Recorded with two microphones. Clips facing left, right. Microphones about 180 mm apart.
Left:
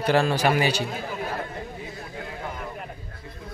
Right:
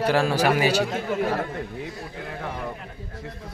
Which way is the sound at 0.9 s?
80° right.